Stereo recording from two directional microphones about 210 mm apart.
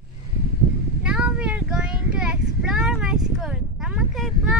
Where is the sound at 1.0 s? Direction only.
5° right (ahead or behind).